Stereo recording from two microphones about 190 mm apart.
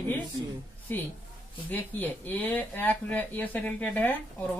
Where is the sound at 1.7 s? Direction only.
10° left (ahead or behind).